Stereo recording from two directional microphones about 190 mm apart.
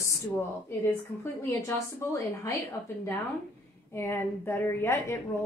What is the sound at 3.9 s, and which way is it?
Speech, 15° left (ahead or behind).